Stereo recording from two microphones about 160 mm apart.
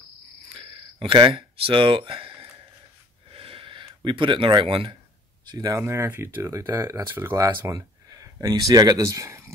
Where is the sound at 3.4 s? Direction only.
35° right (ahead or behind).